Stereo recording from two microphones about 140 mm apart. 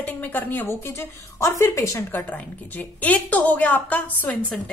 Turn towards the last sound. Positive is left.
turn(degrees=10)  # may be behind; listen again after turning